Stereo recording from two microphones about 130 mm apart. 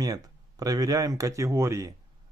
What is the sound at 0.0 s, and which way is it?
Speech, 30° right (ahead or behind).